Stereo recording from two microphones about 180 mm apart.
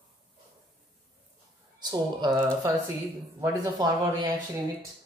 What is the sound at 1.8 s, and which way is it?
Speech, 25° right (ahead or behind).